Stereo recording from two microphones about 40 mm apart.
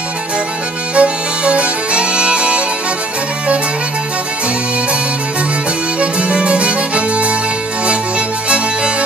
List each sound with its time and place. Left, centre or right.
0.9 s music: right
5.9 s music: right
8.5 s music: right